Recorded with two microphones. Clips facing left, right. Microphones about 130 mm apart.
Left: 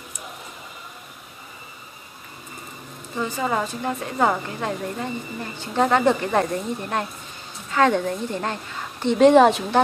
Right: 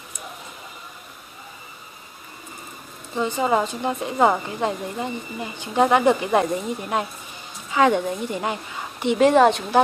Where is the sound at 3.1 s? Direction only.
20° right (ahead or behind); by 9.8 s centre (ahead or behind).